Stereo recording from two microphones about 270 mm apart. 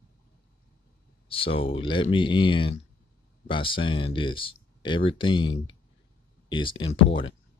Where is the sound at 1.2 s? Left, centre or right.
Centre.